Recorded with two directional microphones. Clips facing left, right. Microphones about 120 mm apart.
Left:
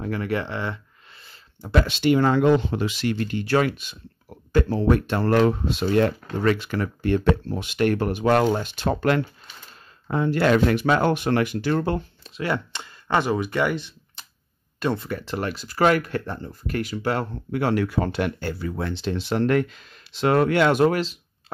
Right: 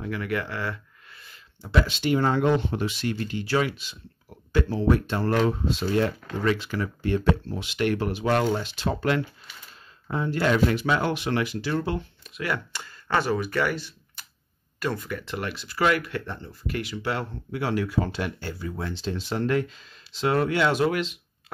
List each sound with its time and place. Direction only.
0.0 s speech: 35° left (ahead or behind)
1.6 s speech: 60° left (ahead or behind)
12.2 s speech: 30° left (ahead or behind); by 21.0 s 50° left (ahead or behind)